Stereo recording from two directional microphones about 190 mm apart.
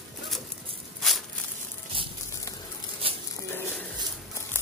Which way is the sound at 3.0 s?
30° right (ahead or behind).